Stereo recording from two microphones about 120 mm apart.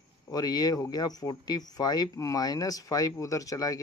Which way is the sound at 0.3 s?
35° left (ahead or behind).